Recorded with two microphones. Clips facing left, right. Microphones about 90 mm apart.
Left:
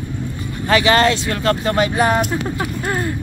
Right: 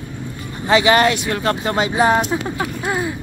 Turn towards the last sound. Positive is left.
turn(degrees=-5)  # may be behind; listen again after turning